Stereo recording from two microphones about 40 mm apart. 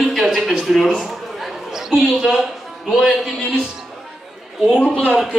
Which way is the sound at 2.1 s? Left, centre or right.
Centre.